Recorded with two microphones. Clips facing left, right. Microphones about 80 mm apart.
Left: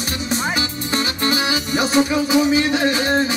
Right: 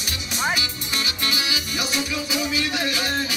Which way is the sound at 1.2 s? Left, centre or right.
Left.